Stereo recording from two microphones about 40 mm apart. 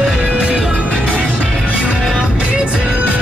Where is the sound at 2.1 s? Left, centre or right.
Right.